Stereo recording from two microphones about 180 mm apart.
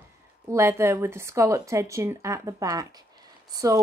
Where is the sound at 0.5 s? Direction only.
15° right (ahead or behind).